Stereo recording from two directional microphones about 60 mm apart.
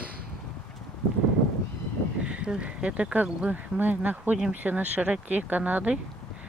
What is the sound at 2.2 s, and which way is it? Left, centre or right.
Speech, centre.